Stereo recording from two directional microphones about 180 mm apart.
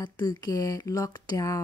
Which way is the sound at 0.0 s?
25° left (ahead or behind).